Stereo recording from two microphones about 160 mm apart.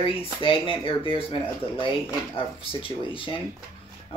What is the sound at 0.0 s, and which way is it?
Speech, 35° left (ahead or behind).